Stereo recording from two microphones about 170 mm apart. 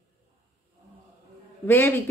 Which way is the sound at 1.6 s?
10° left (ahead or behind).